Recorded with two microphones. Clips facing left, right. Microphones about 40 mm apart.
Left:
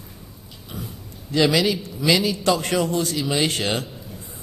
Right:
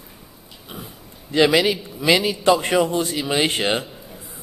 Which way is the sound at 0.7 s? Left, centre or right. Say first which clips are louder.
Left 2 dB; right.